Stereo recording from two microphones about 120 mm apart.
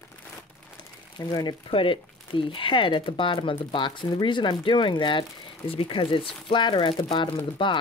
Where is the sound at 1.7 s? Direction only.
45° left (ahead or behind).